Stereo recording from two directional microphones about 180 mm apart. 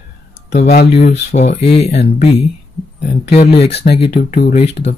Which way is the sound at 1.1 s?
40° left (ahead or behind).